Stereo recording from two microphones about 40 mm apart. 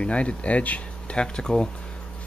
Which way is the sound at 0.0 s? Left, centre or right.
Left.